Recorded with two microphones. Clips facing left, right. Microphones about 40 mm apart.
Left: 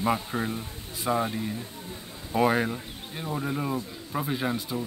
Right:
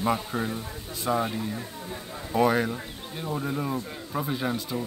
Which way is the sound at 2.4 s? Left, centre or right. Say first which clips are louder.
Right 1 dB; centre.